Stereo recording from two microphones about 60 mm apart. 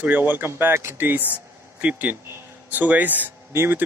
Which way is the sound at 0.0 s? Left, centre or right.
Right.